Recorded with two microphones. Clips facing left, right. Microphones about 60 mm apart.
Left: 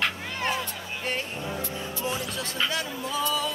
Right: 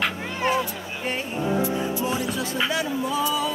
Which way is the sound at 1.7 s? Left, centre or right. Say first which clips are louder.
Right 6 dB; centre.